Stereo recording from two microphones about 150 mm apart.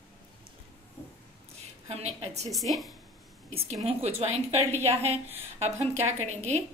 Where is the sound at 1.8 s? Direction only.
45° right (ahead or behind).